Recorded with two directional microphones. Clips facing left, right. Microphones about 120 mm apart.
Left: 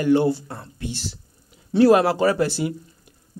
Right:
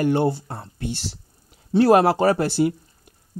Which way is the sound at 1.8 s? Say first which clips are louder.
Even; 50° right (ahead or behind).